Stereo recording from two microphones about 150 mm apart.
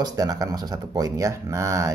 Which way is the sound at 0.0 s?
25° right (ahead or behind).